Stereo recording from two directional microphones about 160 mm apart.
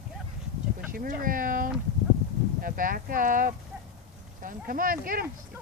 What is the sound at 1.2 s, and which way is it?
Speech, 60° right (ahead or behind).